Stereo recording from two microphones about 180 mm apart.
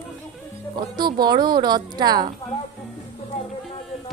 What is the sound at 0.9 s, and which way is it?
A woman's voice, 25° right (ahead or behind).